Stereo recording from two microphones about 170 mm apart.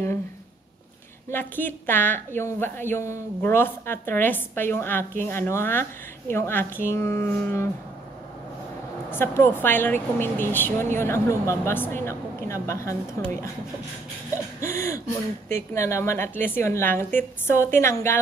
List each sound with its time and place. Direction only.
1.3 s a woman's voice: 10° left (ahead or behind)
9.1 s a woman's voice: 15° left (ahead or behind)
14.6 s a woman's voice: 15° left (ahead or behind)